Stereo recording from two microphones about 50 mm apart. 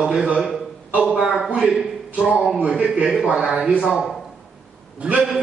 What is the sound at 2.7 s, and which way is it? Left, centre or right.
Speech, right.